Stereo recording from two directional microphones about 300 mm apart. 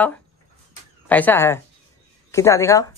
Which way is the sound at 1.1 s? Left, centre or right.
Centre.